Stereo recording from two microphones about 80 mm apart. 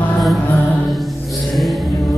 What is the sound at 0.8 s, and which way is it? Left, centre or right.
Music, centre.